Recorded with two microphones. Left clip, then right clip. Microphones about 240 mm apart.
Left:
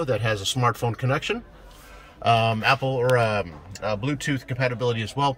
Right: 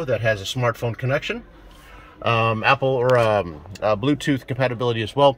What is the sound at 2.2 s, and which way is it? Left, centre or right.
Speech, centre.